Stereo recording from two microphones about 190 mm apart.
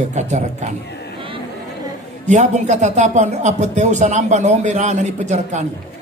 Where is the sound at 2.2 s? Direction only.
35° right (ahead or behind).